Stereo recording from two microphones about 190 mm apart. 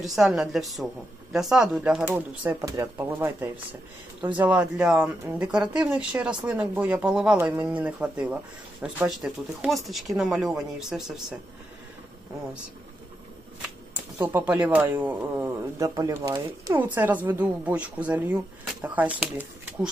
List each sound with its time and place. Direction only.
0.0 s speech: centre (ahead or behind)
4.2 s a man's voice: 25° right (ahead or behind)
4.5 s speech: 5° right (ahead or behind)
14.1 s speech: 10° right (ahead or behind)